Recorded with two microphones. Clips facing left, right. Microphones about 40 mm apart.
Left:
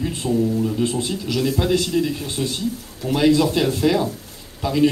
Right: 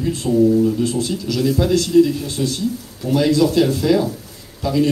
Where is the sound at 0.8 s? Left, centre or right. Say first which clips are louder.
Right 2 dB; left.